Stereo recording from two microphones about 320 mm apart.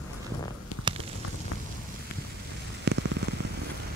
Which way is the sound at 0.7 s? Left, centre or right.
Left.